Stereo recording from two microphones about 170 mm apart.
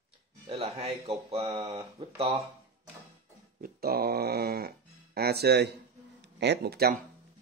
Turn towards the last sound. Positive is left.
turn(degrees=-70)  # may be behind; listen again after turning